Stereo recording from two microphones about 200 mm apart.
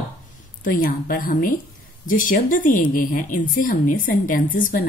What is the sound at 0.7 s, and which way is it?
Speech, 45° left (ahead or behind).